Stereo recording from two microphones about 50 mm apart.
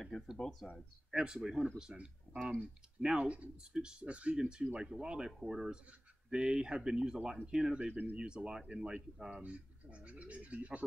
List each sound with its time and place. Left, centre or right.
0.4 s speech: centre
1.1 s speech: centre
7.9 s speech: right
8.2 s speech: centre
9.4 s speech: right